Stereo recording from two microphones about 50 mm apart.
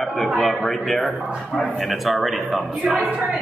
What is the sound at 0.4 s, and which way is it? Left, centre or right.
A man's voice, centre.